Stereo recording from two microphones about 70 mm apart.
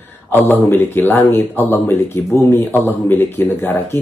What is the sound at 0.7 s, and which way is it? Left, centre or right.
Speech, left.